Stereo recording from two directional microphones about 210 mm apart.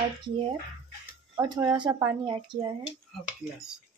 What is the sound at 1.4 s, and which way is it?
Speech, 20° right (ahead or behind).